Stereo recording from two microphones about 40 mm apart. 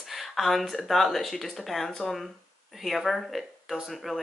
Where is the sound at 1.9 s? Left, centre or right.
Centre.